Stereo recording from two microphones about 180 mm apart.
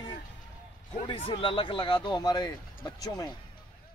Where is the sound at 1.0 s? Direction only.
30° left (ahead or behind).